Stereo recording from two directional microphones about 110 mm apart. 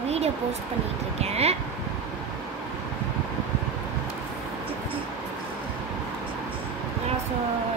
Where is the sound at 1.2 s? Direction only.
70° right (ahead or behind).